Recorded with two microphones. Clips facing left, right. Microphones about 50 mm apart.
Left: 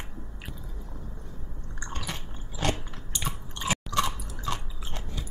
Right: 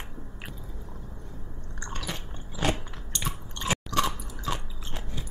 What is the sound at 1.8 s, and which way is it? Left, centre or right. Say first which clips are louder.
Biting: even; centre.